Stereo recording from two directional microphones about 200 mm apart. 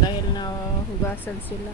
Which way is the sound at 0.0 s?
20° left (ahead or behind).